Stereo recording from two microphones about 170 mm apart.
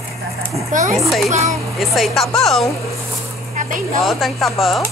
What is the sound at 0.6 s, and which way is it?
Speech, 45° right (ahead or behind).